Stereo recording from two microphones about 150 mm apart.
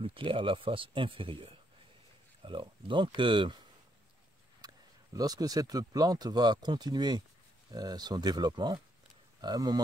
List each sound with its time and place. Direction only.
0.0 s speech: 35° right (ahead or behind)
4.6 s speech: 25° right (ahead or behind)